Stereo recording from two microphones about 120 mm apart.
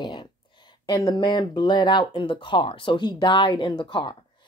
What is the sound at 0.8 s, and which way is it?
Speech, 35° left (ahead or behind).